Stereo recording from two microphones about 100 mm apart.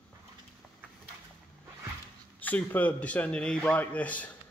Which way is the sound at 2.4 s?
15° left (ahead or behind).